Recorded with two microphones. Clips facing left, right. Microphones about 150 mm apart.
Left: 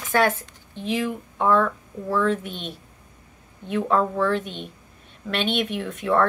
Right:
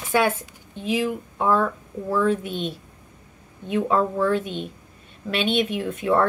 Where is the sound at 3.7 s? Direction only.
10° right (ahead or behind).